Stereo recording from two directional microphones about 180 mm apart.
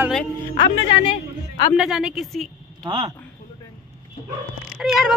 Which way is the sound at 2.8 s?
30° right (ahead or behind).